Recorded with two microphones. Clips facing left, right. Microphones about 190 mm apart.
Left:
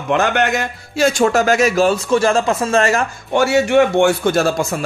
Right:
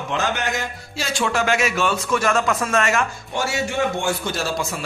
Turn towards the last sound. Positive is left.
turn(degrees=50)  # may be behind; listen again after turning